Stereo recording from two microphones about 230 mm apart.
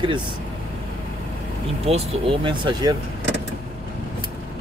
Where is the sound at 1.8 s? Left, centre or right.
Right.